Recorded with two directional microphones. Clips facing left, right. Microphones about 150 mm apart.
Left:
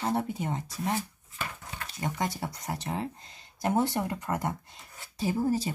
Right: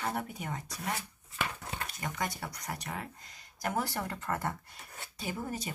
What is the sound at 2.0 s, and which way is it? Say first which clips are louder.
Speech: left 6 dB; 25° left (ahead or behind).